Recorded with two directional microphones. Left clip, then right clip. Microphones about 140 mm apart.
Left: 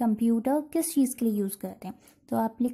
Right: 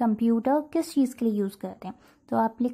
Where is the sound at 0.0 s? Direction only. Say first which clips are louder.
Right 2 dB; 25° left (ahead or behind).